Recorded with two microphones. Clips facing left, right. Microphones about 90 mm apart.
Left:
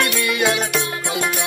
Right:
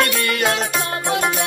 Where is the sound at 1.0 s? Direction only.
45° right (ahead or behind).